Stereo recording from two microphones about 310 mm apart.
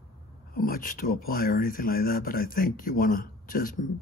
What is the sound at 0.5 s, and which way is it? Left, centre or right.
Speech, left.